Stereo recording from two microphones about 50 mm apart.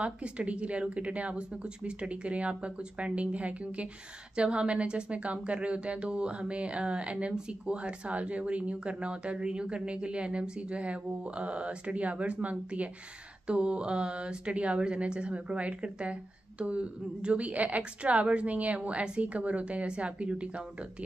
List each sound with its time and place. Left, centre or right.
0.0 s a woman's voice: right